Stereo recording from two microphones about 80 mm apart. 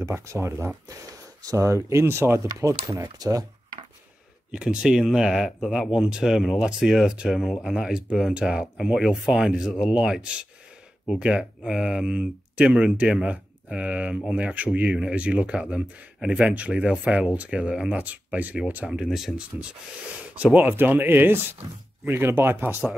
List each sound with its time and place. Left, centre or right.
0.0 s speech: right
1.4 s speech: right
2.0 s speech: right
4.5 s speech: centre
18.0 s speech: centre
18.9 s speech: centre
19.5 s speech: centre